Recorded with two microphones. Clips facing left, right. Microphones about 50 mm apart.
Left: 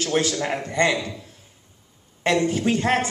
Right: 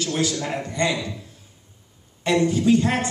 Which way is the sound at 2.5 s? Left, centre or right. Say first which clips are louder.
Right 2 dB; left.